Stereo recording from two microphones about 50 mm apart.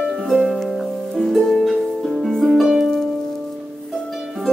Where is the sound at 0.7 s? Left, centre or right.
Centre.